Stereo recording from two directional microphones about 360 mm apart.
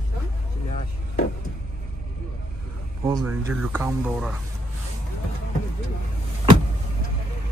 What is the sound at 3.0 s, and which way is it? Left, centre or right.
Speech, centre.